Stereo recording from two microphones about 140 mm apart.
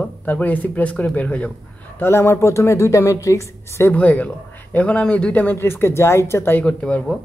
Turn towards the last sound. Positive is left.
turn(degrees=5)  # may be behind; listen again after turning